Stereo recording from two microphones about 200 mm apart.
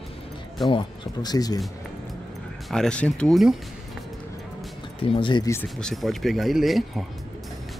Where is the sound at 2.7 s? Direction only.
5° left (ahead or behind).